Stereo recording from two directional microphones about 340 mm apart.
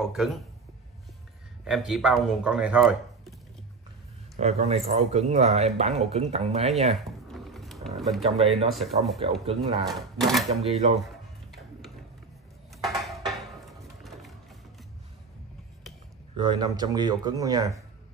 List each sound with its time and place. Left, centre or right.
0.0 s speech: centre
1.6 s speech: centre
4.4 s speech: centre
6.9 s a sound: centre
8.2 s speech: centre
8.7 s speech: centre
9.5 s speech: centre
9.8 s speech: centre
10.5 s speech: centre
12.8 s music: centre
16.3 s speech: centre